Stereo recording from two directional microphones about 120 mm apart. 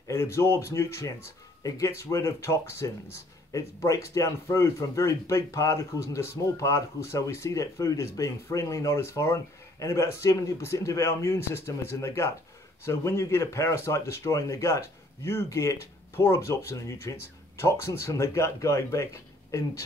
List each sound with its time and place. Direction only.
0.0 s speech: 25° left (ahead or behind)